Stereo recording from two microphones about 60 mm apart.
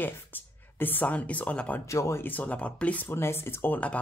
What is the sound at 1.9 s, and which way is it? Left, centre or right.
Speech, left.